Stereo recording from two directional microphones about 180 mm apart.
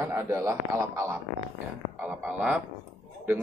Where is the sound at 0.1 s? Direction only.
15° right (ahead or behind).